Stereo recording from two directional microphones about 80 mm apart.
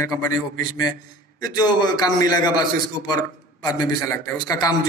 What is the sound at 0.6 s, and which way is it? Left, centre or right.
A man's voice, left.